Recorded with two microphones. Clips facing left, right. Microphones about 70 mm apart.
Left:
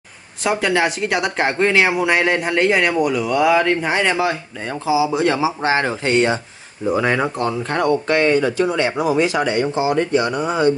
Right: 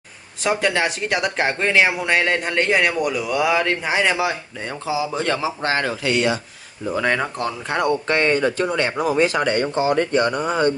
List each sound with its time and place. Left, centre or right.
0.4 s speech: centre
6.0 s speech: left
6.9 s speech: centre
7.3 s speech: centre
8.1 s speech: right